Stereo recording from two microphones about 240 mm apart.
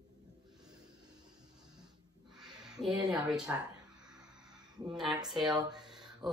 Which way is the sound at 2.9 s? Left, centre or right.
Centre.